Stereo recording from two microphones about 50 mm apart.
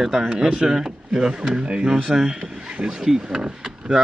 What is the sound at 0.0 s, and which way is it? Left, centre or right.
Speech, centre.